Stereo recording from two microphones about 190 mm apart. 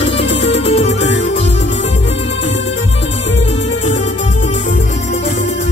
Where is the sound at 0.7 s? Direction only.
35° left (ahead or behind).